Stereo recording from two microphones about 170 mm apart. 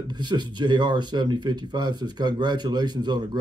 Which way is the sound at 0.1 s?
25° right (ahead or behind).